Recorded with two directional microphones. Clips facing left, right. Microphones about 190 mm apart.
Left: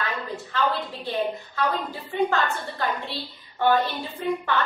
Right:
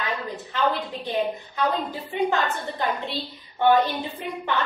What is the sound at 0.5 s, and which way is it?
A woman's voice, 20° right (ahead or behind).